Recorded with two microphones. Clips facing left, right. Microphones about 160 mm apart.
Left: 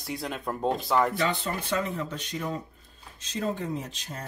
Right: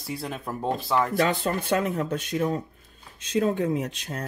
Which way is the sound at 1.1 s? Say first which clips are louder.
Right 5 dB; 55° right (ahead or behind).